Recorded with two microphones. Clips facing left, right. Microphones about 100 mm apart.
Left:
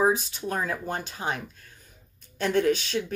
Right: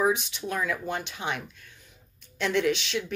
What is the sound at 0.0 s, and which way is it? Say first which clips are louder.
Speech: left 2 dB; 40° left (ahead or behind).